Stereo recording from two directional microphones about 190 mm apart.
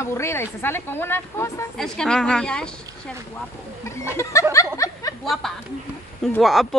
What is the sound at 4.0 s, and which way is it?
Speech, 15° left (ahead or behind).